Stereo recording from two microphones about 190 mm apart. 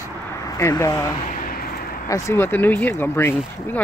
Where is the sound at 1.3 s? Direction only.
50° left (ahead or behind).